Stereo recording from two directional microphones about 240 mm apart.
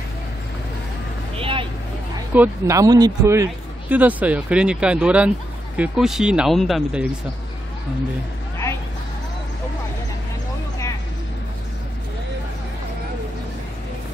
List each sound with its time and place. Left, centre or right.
1.4 s vehicle: right
2.3 s speech: centre